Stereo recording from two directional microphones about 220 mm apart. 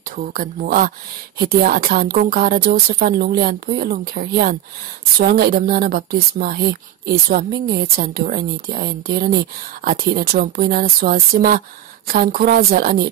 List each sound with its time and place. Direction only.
0.2 s speech: 40° right (ahead or behind)